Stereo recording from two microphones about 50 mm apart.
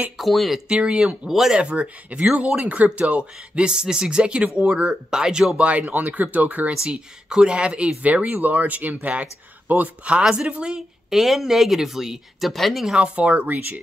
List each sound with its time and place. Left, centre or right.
0.2 s speech: centre
0.7 s speech: centre
1.6 s speech: right
5.6 s speech: right
6.7 s speech: centre
11.1 s speech: centre
12.9 s speech: right